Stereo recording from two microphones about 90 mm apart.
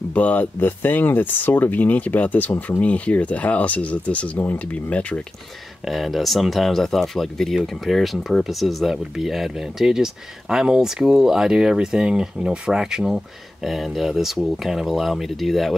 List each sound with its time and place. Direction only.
0.1 s speech: 15° left (ahead or behind)
5.9 s speech: centre (ahead or behind)